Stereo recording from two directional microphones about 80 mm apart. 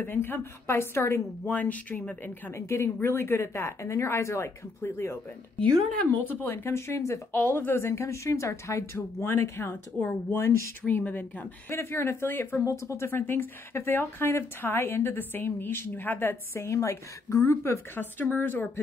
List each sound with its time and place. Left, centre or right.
0.0 s speech: left
1.5 s speech: centre
2.5 s speech: left
5.6 s speech: centre
6.4 s speech: left
12.6 s speech: left